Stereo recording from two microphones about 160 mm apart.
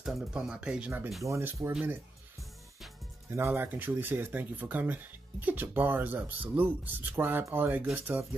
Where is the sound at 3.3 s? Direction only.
15° right (ahead or behind).